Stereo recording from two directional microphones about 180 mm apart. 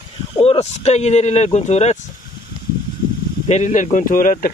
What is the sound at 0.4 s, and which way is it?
Speech, 35° left (ahead or behind).